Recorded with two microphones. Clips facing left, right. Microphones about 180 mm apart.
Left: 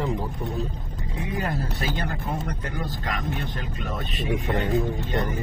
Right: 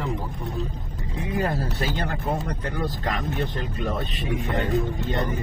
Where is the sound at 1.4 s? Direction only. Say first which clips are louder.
Right 4 dB; 30° right (ahead or behind).